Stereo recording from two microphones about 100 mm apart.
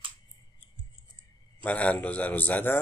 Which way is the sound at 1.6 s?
15° left (ahead or behind).